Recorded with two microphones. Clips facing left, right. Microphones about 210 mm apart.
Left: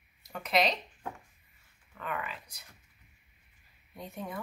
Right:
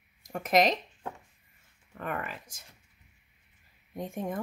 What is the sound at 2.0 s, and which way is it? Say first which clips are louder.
Speech: right 3 dB; 45° right (ahead or behind).